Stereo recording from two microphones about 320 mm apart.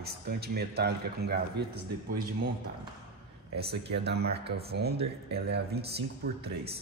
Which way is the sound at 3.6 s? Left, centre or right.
Right.